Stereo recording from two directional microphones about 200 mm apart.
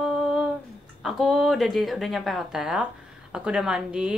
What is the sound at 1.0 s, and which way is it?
A woman's voice, centre (ahead or behind).